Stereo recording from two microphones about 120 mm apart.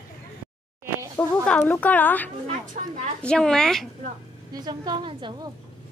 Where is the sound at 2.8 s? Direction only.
90° right.